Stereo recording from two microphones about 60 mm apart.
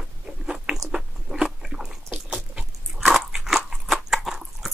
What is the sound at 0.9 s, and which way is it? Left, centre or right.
Biting, centre.